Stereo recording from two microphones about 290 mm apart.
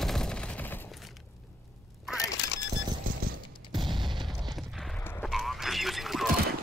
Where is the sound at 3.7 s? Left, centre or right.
Centre.